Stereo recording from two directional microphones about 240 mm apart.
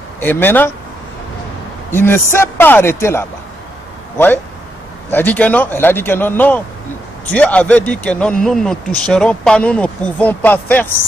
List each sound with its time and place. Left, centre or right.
0.2 s speech: centre
1.9 s speech: centre
5.1 s speech: centre